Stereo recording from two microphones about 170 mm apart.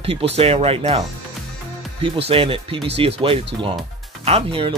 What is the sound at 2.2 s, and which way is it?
Speech, 35° right (ahead or behind).